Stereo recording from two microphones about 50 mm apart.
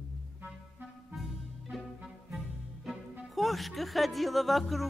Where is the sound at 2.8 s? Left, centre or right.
Centre.